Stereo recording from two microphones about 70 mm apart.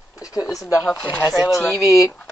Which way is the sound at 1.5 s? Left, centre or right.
Left.